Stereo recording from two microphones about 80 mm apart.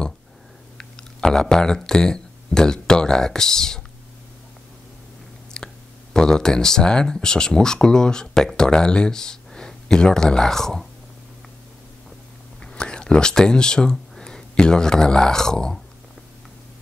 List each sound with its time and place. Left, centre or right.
0.7 s speech: centre
5.5 s whispering: centre
6.1 s speech: centre
12.6 s speech: centre